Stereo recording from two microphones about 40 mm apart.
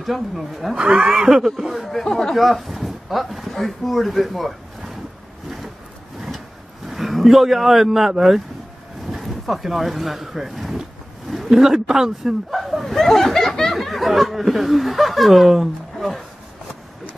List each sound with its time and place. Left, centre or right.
0.0 s speech: centre
0.7 s speech: right
1.1 s speech: centre
2.3 s speech: centre
6.9 s speech: centre
9.0 s a sound: centre
11.5 s speech: centre